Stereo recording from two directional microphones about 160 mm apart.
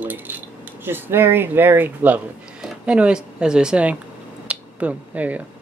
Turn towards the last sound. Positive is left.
turn(degrees=-10)  # may be behind; listen again after turning